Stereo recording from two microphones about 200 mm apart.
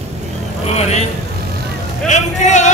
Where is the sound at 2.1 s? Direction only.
35° left (ahead or behind).